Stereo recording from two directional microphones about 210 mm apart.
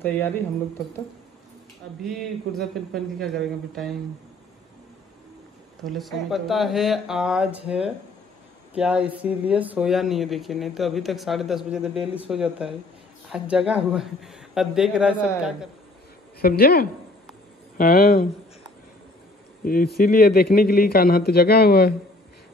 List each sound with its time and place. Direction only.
0.0 s speech: 10° left (ahead or behind)
2.0 s speech: centre (ahead or behind)
5.9 s speech: centre (ahead or behind)
16.3 s a man's voice: 45° left (ahead or behind)
19.6 s a man's voice: 45° left (ahead or behind)